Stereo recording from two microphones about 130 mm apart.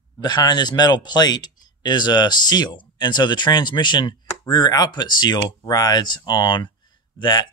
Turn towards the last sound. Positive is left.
turn(degrees=35)  # may be behind; listen again after turning